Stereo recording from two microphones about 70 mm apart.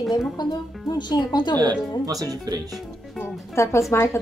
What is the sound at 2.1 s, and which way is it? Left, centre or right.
Speech, right.